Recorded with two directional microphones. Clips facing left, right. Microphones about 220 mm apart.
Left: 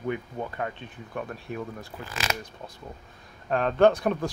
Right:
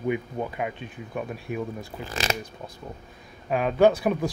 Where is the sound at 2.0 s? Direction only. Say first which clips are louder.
Right 3 dB; 30° right (ahead or behind).